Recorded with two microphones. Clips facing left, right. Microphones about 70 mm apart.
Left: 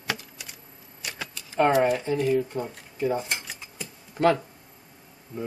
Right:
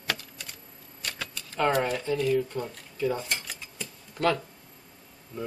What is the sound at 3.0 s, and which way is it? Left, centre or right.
Cutlery, left.